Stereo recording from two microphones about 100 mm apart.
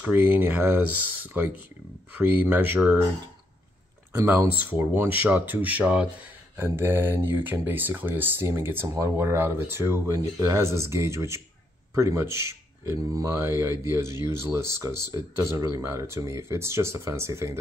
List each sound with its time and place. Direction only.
0.0 s speech: 20° right (ahead or behind)
4.3 s speech: 20° right (ahead or behind)